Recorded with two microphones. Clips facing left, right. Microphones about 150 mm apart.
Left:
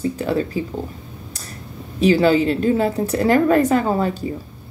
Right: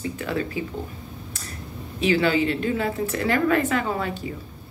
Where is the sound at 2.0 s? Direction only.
40° left (ahead or behind).